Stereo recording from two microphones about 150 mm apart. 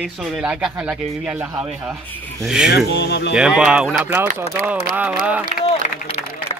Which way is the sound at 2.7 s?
90° left.